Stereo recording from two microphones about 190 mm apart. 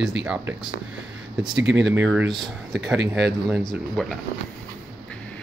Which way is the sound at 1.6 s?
65° right (ahead or behind).